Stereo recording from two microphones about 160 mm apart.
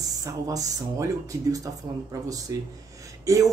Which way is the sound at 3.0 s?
20° right (ahead or behind).